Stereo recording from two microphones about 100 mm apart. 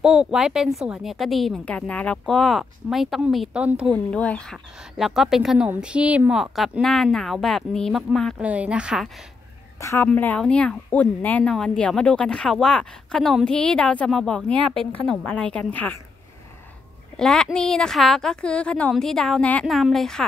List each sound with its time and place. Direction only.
0.0 s a woman's voice: 5° right (ahead or behind)
1.7 s a woman's voice: 15° left (ahead or behind); by 3.9 s 10° right (ahead or behind)
3.9 s speech: 10° left (ahead or behind)
4.9 s a woman's voice: 5° right (ahead or behind)
6.3 s a woman's voice: centre (ahead or behind)
8.4 s a woman's voice: 15° right (ahead or behind)
9.8 s a woman's voice: 30° left (ahead or behind)
10.0 s speech: 15° left (ahead or behind)
17.2 s a woman's voice: 5° left (ahead or behind)